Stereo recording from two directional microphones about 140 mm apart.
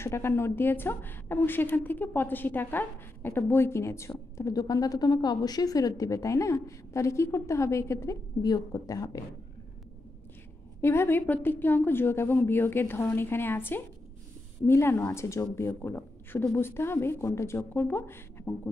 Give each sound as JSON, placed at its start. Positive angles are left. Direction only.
{"t": 0.0, "sound": "a woman's voice", "side_deg": 20}
{"t": 10.8, "sound": "a woman's voice", "side_deg": 15}